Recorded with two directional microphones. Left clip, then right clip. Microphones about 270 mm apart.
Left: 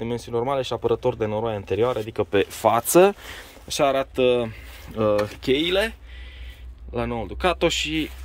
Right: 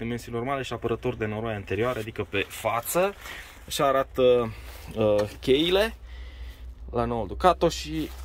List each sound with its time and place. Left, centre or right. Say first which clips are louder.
0.0 s speech: left 6 dB; centre
2.6 s speech: left 9 dB; left
3.7 s speech: left 2 dB; centre